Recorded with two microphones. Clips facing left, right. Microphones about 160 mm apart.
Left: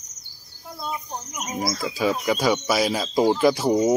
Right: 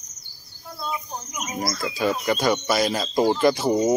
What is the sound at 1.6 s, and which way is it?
Speech, centre (ahead or behind).